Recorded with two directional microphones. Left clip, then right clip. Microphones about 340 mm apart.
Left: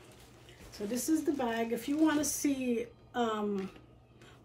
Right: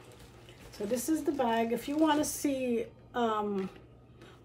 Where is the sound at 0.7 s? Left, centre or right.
Centre.